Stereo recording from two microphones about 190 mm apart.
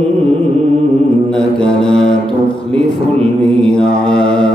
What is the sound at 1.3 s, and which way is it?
Mantra, 5° left (ahead or behind).